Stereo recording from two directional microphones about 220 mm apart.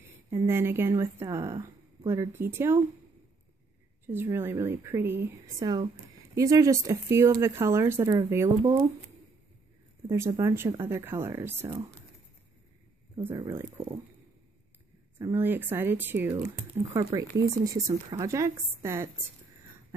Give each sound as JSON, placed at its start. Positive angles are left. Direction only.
{"t": 0.3, "sound": "speech", "side_deg": -10}
{"t": 4.0, "sound": "speech", "side_deg": -10}
{"t": 10.0, "sound": "speech", "side_deg": -15}
{"t": 13.4, "sound": "speech", "side_deg": -15}
{"t": 15.1, "sound": "speech", "side_deg": -10}